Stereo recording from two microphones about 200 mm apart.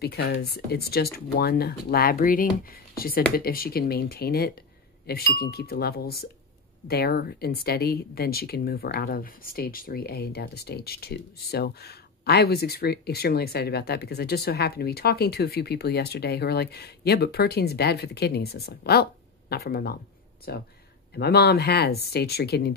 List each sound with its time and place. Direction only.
0.0 s speech: 55° left (ahead or behind)